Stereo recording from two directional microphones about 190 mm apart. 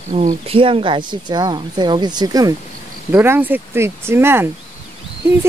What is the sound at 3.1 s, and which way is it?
Speech, 10° right (ahead or behind).